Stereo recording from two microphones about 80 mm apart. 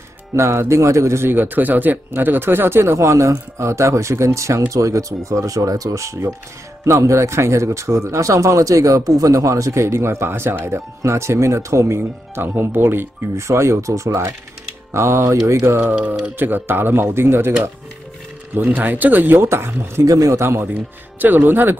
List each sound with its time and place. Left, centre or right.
0.4 s a man's voice: right
12.0 s speech: right
13.5 s a man's voice: right
15.8 s speech: centre
18.5 s speech: right
20.1 s a man's voice: right